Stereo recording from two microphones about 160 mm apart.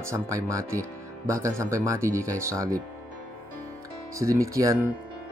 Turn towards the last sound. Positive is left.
turn(degrees=-20)  # may be behind; listen again after turning